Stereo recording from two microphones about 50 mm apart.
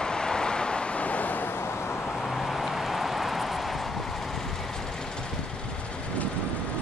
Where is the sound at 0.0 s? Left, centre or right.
Centre; by 1.5 s left.